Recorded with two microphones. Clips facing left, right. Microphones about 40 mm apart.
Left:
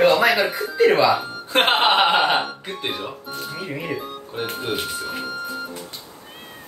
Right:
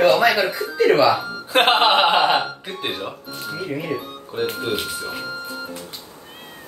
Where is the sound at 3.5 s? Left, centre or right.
Centre.